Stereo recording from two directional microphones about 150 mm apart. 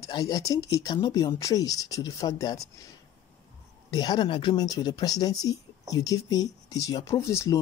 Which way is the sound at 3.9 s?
30° left (ahead or behind).